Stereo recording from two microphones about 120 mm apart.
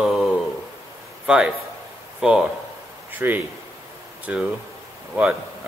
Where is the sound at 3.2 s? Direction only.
15° right (ahead or behind).